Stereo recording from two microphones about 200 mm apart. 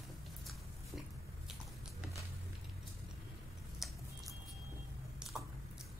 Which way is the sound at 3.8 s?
Centre (ahead or behind).